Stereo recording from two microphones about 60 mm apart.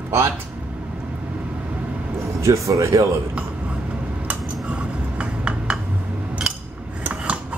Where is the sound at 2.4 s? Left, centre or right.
Right.